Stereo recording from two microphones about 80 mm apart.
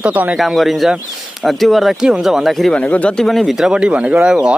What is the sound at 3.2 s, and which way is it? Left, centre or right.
Speech, centre.